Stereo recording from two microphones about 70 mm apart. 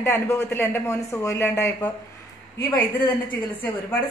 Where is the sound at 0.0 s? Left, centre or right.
Left.